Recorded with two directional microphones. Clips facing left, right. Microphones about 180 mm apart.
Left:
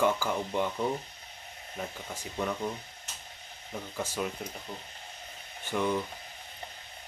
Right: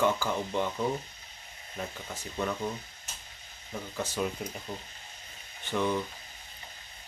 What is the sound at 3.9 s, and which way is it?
Speech, 5° left (ahead or behind).